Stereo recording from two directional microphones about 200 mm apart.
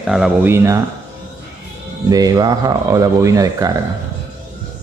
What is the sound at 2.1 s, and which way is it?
Speech, 20° right (ahead or behind).